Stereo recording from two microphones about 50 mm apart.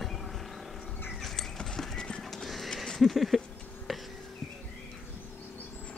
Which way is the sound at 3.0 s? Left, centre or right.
Centre.